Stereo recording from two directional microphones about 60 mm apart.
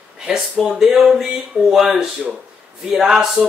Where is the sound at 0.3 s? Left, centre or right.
Centre.